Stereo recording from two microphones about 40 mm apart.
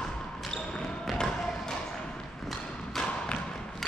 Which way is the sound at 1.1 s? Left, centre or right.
Centre.